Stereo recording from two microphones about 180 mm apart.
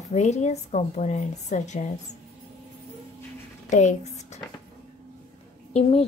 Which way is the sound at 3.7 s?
40° left (ahead or behind).